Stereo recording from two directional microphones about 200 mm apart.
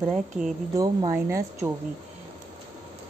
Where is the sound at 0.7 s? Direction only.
20° right (ahead or behind).